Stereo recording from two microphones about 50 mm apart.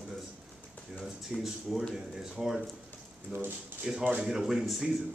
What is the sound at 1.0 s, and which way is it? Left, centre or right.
A man's voice, centre.